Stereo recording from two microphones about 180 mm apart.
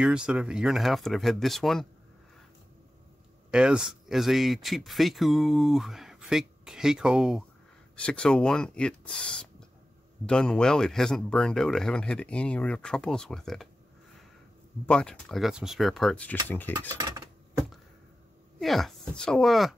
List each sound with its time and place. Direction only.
0.0 s speech: 5° right (ahead or behind)
3.5 s speech: 5° right (ahead or behind)
14.9 s speech: 5° left (ahead or behind)
16.4 s stir: 10° left (ahead or behind)
16.9 s speech: 20° right (ahead or behind)
18.6 s speech: centre (ahead or behind)